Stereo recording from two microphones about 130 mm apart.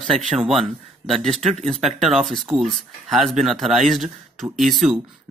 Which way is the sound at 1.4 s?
55° right (ahead or behind).